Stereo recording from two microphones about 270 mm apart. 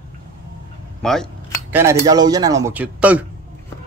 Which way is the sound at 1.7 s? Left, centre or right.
Centre.